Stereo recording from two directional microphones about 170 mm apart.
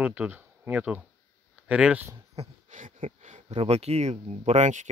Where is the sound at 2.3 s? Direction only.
45° right (ahead or behind).